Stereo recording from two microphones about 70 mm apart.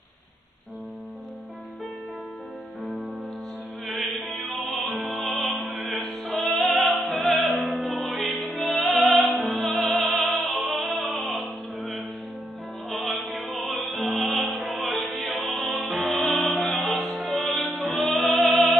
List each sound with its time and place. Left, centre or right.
3.9 s music: centre
5.6 s music: right
5.9 s opera: centre
8.5 s music: centre
12.9 s music: centre